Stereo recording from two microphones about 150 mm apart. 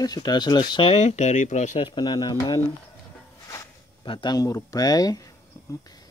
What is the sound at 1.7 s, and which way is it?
Speech, 35° left (ahead or behind).